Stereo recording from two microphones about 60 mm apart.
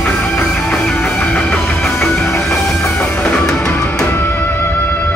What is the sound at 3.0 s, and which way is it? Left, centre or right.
Music, centre.